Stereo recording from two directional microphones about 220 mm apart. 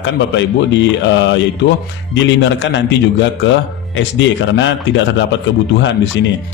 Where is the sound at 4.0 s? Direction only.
55° left (ahead or behind).